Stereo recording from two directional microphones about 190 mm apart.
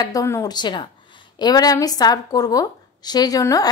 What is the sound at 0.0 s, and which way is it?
A woman's voice, 20° left (ahead or behind).